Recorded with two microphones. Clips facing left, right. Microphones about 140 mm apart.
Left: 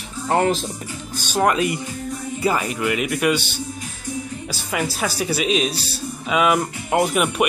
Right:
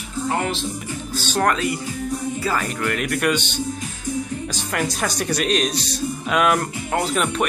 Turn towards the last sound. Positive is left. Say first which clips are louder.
# left 3 dB
turn(degrees=15)  # may be behind; listen again after turning